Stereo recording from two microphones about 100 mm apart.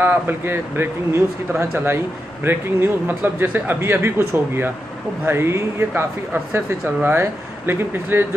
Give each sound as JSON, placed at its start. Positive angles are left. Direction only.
{"t": 0.0, "sound": "speech", "side_deg": -20}